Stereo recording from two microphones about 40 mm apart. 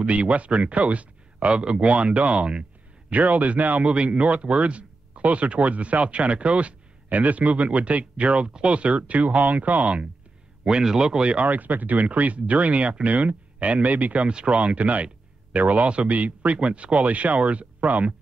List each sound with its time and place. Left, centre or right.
0.0 s speech: right
3.9 s speech: right
10.6 s a man's voice: centre
11.4 s speech: right
14.2 s speech: right
16.5 s speech: right